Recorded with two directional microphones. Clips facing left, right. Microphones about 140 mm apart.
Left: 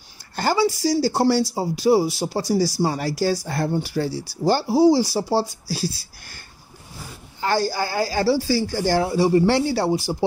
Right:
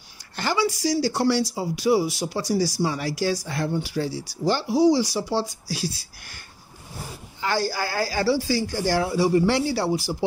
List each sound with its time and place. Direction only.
0.6 s speech: 35° left (ahead or behind)
7.3 s a sound: 35° left (ahead or behind)
7.6 s speech: 25° left (ahead or behind)